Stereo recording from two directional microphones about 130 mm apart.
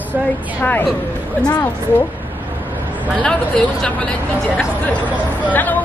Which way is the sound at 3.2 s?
5° left (ahead or behind).